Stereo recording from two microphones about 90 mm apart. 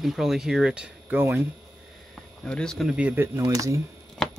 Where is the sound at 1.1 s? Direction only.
25° right (ahead or behind).